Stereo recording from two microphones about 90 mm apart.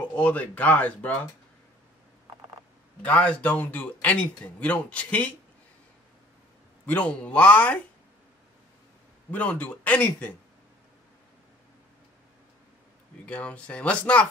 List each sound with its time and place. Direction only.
0.1 s a man's voice: 15° left (ahead or behind)
3.0 s a man's voice: 15° left (ahead or behind)
6.9 s a man's voice: 15° left (ahead or behind)
9.3 s a man's voice: 15° left (ahead or behind)
13.2 s a man's voice: 15° left (ahead or behind)